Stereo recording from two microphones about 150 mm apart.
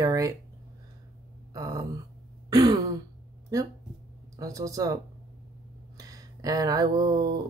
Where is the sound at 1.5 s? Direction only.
25° right (ahead or behind).